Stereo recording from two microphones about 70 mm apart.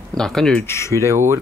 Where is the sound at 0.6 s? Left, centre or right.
Left.